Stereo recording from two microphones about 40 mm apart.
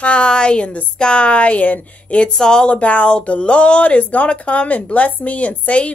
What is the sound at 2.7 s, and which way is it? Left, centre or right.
A woman's voice, left.